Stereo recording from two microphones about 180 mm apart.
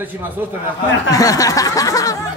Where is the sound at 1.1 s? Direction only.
20° left (ahead or behind).